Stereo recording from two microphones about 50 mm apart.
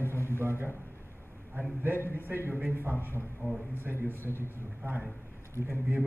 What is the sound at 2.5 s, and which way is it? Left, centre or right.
Speech, right.